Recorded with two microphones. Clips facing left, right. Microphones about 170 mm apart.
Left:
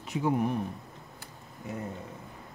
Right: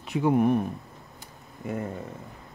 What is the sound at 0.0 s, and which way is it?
Speech, 65° right (ahead or behind).